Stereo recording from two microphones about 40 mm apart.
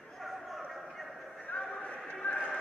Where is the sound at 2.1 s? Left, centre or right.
Left.